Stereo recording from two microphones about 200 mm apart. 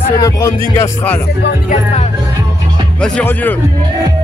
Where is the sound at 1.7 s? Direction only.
35° left (ahead or behind).